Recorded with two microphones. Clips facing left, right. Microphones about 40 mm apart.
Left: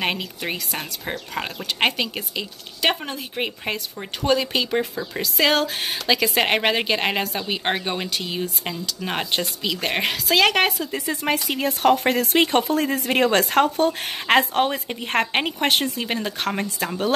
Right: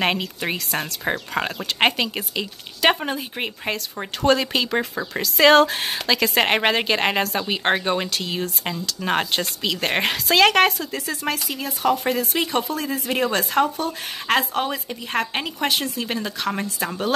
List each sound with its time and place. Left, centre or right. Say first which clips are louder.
0.0 s speech: right 3 dB; centre
1.0 s speech: right 6 dB; right
1.4 s speech: right 1 dB; centre
3.3 s a woman's voice: even; centre
9.0 s a woman's voice: right 3 dB; centre
10.9 s speech: left 2 dB; centre
11.3 s speech: left 5 dB; left
16.0 s speech: left 1 dB; left
16.3 s speech: even; left